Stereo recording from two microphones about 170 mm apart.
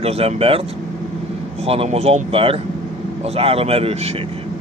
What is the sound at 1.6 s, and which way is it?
Speech, 35° right (ahead or behind).